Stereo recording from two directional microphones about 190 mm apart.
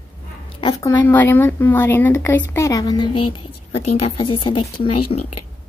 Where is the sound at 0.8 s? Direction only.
10° left (ahead or behind).